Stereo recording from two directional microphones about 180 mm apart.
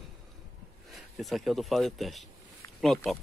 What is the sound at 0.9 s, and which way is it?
Speech, centre (ahead or behind).